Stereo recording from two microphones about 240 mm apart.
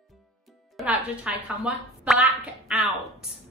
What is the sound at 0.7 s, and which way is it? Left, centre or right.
Speech, centre.